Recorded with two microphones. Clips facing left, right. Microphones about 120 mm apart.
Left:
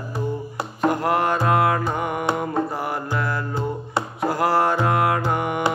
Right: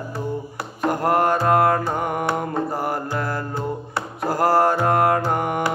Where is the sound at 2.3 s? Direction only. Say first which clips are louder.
Even; 45° right (ahead or behind).